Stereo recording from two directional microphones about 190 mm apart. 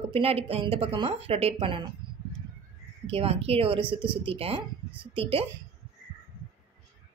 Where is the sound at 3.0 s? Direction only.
30° right (ahead or behind).